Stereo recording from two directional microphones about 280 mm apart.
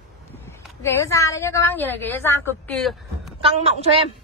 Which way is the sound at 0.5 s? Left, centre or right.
Centre.